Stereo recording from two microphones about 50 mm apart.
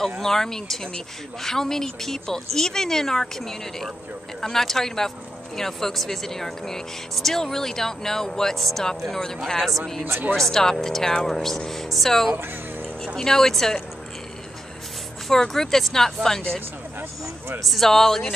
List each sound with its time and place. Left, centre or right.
0.2 s speech: centre
10.3 s speech: centre
15.2 s speech: centre
17.6 s speech: centre